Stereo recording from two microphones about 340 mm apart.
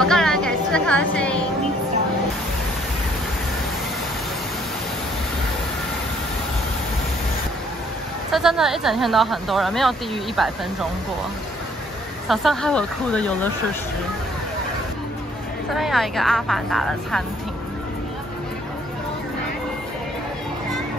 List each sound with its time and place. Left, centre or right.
0.0 s a sound: centre
8.3 s speech: centre
12.3 s speech: centre
15.7 s speech: centre